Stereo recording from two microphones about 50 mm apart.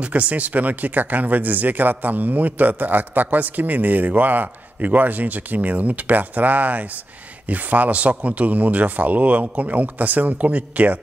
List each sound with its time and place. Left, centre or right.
0.0 s speech: right